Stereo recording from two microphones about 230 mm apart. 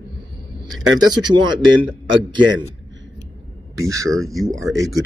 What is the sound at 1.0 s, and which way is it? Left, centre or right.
Speech, centre.